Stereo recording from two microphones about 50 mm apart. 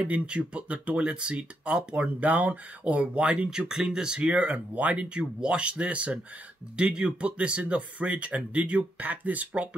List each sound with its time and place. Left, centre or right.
0.0 s speech: right
2.1 s speech: right
3.4 s speech: centre; by 9.5 s right